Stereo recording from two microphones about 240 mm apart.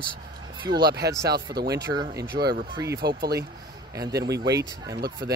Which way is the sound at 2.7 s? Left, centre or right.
Centre.